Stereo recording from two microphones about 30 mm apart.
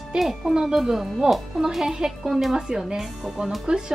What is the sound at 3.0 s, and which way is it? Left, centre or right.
Speech, right.